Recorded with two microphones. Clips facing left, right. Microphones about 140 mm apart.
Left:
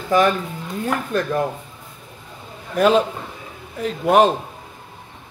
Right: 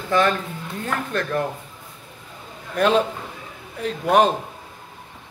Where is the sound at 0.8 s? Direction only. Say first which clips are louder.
Left 4 dB; 15° left (ahead or behind).